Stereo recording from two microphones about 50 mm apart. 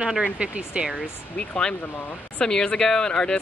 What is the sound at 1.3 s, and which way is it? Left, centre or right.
Speech, centre.